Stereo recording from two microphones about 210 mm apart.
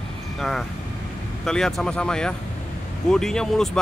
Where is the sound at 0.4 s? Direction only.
Centre (ahead or behind).